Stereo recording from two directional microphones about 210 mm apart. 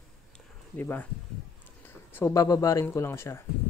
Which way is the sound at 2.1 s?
15° left (ahead or behind).